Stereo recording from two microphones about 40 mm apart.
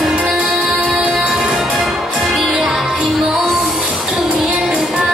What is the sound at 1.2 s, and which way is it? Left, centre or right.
Music, centre.